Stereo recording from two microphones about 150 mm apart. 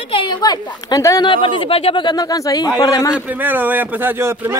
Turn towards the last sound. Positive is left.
turn(degrees=-15)  # may be behind; listen again after turning